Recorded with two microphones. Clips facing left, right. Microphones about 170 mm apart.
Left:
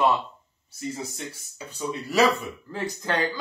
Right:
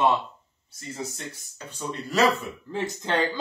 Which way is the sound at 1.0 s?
10° left (ahead or behind).